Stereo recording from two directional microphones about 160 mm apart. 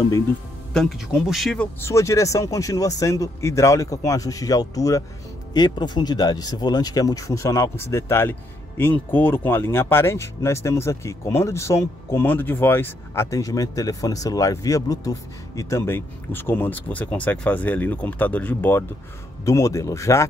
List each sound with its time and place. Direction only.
0.7 s speech: centre (ahead or behind)
1.8 s speech: 20° left (ahead or behind)